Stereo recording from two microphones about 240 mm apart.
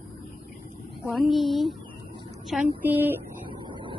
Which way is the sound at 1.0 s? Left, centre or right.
Centre.